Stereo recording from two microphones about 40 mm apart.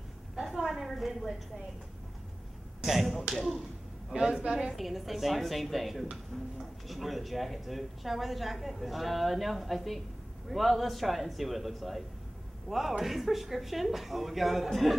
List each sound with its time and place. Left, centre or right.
0.4 s a sound: centre
2.8 s speech: centre
4.1 s a woman's voice: centre
4.6 s a man's voice: centre